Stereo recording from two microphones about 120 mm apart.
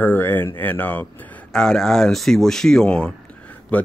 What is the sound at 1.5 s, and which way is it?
A man's voice, 5° left (ahead or behind).